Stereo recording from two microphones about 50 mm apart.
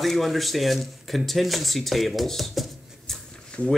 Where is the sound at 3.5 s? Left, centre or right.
Centre.